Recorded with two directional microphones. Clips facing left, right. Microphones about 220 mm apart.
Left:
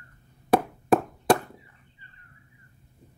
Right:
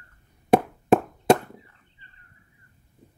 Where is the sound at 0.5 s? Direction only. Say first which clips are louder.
Right 3 dB; 25° right (ahead or behind).